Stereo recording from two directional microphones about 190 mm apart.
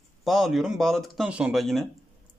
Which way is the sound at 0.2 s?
Centre (ahead or behind).